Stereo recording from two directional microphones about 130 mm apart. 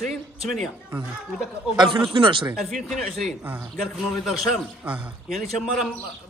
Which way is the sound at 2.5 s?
Centre (ahead or behind).